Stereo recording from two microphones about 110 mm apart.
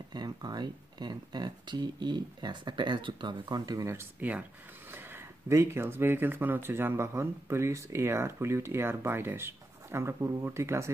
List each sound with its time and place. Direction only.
0.1 s speech: 40° right (ahead or behind)